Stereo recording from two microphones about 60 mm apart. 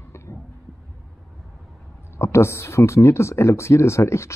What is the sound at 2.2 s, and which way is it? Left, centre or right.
Speech, left.